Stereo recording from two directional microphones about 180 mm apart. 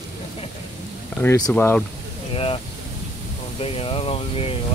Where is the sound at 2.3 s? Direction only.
30° left (ahead or behind).